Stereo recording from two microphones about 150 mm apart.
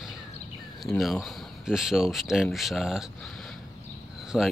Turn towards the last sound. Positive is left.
turn(degrees=-5)  # may be behind; listen again after turning